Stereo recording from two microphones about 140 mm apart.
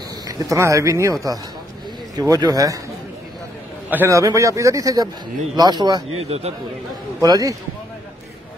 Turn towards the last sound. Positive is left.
turn(degrees=-25)  # may be behind; listen again after turning